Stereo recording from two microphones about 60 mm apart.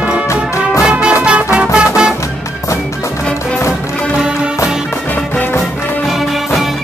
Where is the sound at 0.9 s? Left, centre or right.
Right.